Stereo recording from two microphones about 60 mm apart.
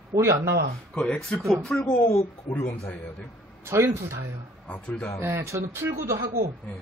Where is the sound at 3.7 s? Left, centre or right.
Right.